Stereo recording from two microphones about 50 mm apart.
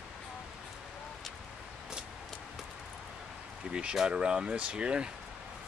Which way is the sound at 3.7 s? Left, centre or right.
Centre.